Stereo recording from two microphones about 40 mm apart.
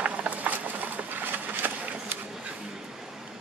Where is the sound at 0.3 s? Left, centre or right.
Right.